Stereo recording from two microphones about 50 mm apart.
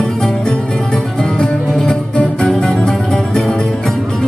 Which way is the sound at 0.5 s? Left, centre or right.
Centre.